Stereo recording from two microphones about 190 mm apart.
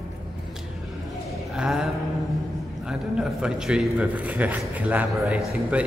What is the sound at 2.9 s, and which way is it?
A man's voice, 5° right (ahead or behind).